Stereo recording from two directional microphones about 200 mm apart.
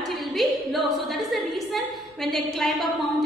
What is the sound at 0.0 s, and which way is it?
A woman's voice, centre (ahead or behind).